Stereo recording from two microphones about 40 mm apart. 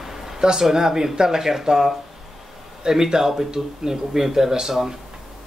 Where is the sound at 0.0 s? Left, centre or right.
Centre.